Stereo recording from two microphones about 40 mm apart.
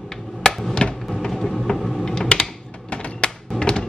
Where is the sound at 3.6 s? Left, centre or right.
Left.